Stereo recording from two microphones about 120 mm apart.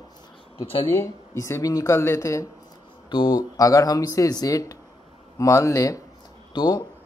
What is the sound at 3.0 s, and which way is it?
Speech, 40° left (ahead or behind).